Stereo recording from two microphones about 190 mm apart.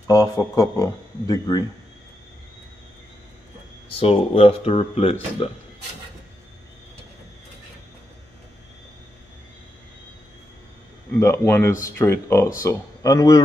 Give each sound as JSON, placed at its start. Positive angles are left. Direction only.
{"t": 0.0, "sound": "speech", "side_deg": 20}
{"t": 4.0, "sound": "speech", "side_deg": 30}
{"t": 11.1, "sound": "speech", "side_deg": 15}